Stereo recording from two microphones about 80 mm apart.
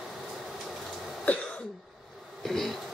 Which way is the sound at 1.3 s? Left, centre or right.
Centre.